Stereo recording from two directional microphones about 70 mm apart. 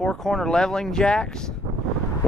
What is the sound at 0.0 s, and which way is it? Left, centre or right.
Speech, centre.